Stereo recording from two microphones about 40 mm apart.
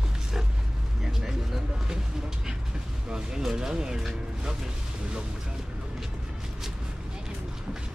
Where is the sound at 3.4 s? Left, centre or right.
Centre.